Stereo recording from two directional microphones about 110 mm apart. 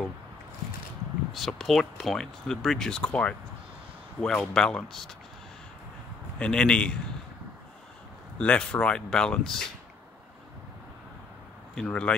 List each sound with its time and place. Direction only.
1.3 s speech: centre (ahead or behind)
6.4 s speech: 10° left (ahead or behind)
8.4 s speech: 10° left (ahead or behind)
11.7 s speech: 10° left (ahead or behind)